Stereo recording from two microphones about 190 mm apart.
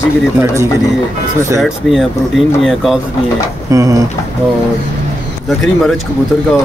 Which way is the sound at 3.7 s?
15° right (ahead or behind).